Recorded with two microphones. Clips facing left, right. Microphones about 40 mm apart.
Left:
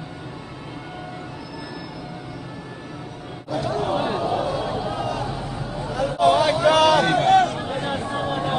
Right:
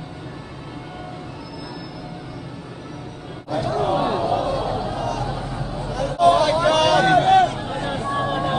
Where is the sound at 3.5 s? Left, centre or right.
Centre.